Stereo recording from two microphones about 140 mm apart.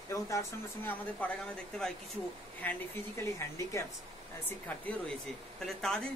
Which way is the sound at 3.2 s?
20° left (ahead or behind).